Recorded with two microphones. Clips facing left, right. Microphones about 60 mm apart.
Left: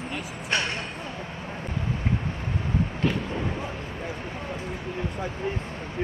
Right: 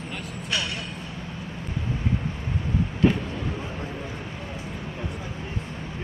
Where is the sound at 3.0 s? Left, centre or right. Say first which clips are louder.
Right 6 dB; centre.